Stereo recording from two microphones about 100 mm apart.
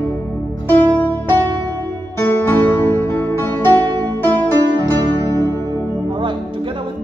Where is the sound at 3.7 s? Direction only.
45° right (ahead or behind).